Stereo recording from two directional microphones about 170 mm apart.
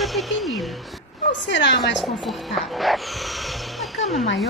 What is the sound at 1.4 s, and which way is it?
Speech, 90° left.